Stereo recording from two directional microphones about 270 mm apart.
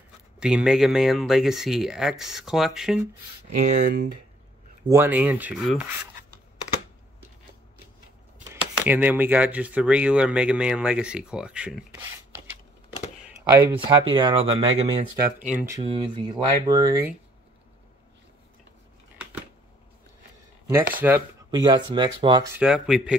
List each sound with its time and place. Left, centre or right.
0.4 s speech: centre
3.5 s speech: right
4.8 s speech: centre
8.8 s speech: centre
13.4 s speech: centre
14.0 s speech: centre
15.5 s speech: centre
20.6 s speech: centre